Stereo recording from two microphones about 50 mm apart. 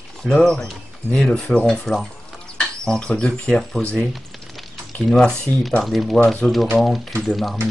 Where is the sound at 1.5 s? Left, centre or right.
Left.